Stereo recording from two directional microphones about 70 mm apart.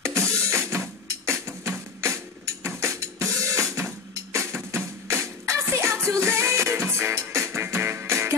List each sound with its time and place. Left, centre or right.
0.0 s music: right